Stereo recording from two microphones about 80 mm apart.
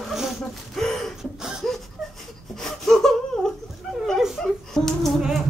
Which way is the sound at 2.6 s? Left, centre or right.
Centre.